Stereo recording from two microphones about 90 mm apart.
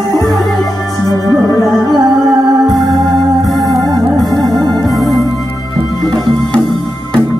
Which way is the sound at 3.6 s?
45° right (ahead or behind).